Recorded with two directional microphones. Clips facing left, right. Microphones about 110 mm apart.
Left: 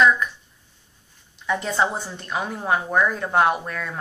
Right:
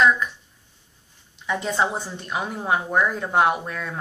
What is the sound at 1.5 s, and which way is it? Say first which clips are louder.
A woman's voice: left 1 dB; 15° right (ahead or behind).